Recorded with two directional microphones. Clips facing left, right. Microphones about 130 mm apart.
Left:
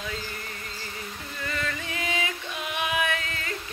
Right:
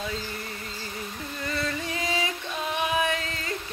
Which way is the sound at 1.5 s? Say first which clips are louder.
Right 2 dB; 35° right (ahead or behind).